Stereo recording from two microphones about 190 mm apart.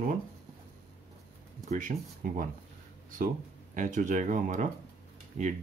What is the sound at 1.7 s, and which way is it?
Speech, 45° right (ahead or behind).